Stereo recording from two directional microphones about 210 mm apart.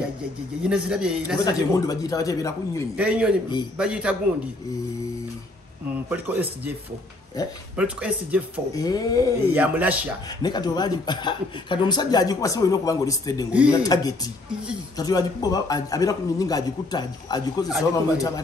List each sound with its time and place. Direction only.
0.7 s a man's voice: 5° right (ahead or behind)
1.4 s speech: 15° left (ahead or behind)
3.0 s a man's voice: 5° right (ahead or behind)
6.0 s speech: 10° right (ahead or behind)
7.7 s speech: 5° right (ahead or behind)
8.7 s speech: 15° left (ahead or behind)
9.5 s speech: 5° right (ahead or behind)
10.4 s speech: 20° left (ahead or behind)